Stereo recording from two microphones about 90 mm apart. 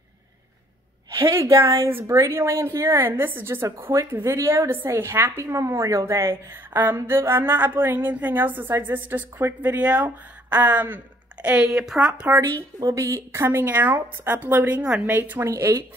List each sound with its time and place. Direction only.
1.6 s a woman's voice: 30° right (ahead or behind); by 12.1 s 5° right (ahead or behind)
12.1 s speech: 20° right (ahead or behind)
12.4 s a woman's voice: 35° right (ahead or behind); by 15.1 s 15° right (ahead or behind)
15.1 s a woman's voice: 25° right (ahead or behind)